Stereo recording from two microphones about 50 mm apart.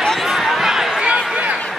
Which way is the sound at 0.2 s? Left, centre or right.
Centre.